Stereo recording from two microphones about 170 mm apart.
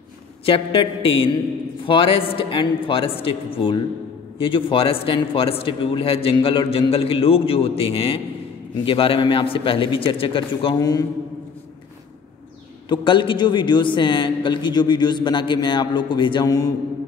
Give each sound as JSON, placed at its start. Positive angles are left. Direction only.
{"t": 0.5, "sound": "a man's voice", "side_deg": 30}
{"t": 12.8, "sound": "a man's voice", "side_deg": 30}